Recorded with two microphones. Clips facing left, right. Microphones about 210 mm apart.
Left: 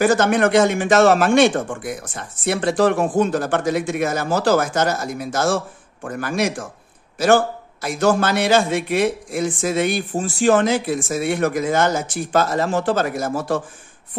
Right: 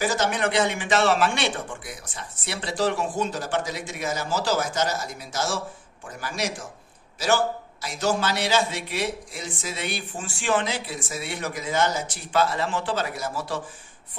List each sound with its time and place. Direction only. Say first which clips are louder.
0.0 s a man's voice: left 8 dB; 55° left (ahead or behind)